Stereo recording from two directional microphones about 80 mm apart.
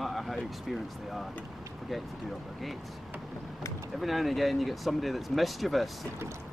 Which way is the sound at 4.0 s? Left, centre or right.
Centre.